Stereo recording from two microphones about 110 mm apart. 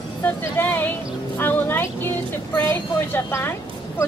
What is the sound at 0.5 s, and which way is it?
A woman's voice, 20° left (ahead or behind).